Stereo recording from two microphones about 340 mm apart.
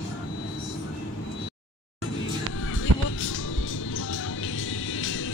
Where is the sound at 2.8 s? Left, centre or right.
Left.